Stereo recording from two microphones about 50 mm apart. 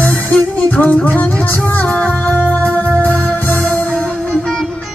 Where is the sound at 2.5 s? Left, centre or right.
Left.